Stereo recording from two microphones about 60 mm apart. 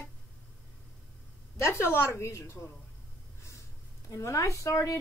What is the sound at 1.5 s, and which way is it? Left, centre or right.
A woman's voice, left.